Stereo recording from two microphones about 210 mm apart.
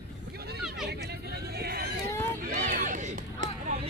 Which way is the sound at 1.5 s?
50° right (ahead or behind).